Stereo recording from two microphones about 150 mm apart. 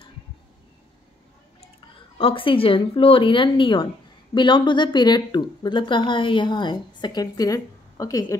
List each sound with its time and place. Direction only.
2.1 s speech: 35° left (ahead or behind)